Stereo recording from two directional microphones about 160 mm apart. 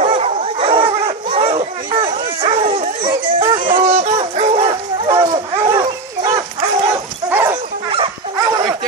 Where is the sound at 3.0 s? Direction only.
30° right (ahead or behind).